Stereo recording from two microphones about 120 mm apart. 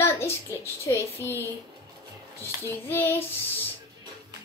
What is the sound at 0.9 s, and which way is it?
Speech, 20° left (ahead or behind).